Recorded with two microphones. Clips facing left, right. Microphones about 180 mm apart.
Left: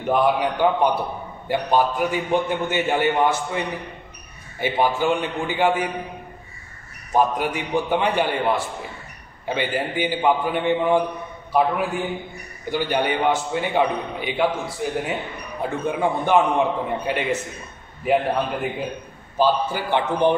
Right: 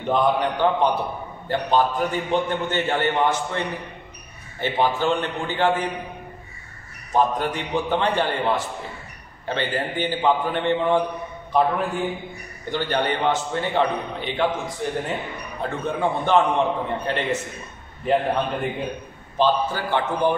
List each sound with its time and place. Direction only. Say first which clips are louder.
0.0 s a man's voice: left 1 dB; 10° left (ahead or behind)
7.1 s a man's voice: left 1 dB; 10° left (ahead or behind)